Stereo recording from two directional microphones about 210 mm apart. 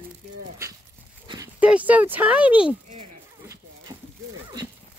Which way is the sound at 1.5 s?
5° right (ahead or behind).